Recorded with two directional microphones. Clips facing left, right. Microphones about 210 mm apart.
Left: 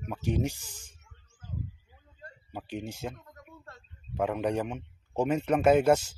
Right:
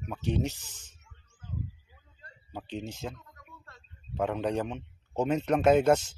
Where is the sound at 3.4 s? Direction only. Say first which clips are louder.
Left 5 dB; 50° left (ahead or behind).